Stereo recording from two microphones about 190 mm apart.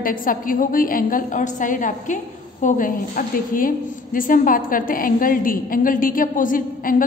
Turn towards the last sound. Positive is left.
turn(degrees=45)  # may be behind; listen again after turning